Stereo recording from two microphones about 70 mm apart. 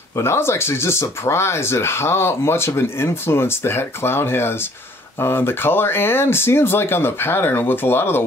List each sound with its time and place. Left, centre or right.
0.1 s speech: left